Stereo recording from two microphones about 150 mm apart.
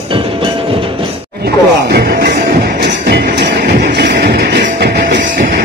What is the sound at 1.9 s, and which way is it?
Music, 90° right.